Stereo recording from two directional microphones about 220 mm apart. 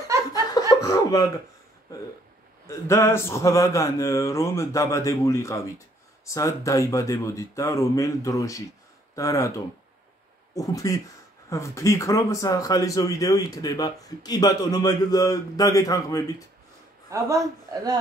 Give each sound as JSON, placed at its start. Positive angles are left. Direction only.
{"t": 0.3, "sound": "laughter", "side_deg": 15}
{"t": 0.7, "sound": "chuckle", "side_deg": 15}
{"t": 2.6, "sound": "speech", "side_deg": 10}
{"t": 10.5, "sound": "speech", "side_deg": 15}
{"t": 17.1, "sound": "a man's voice", "side_deg": -15}